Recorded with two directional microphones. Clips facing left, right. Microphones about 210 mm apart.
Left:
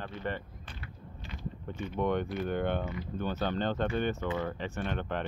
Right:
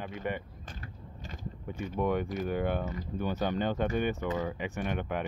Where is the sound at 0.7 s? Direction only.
45° right (ahead or behind).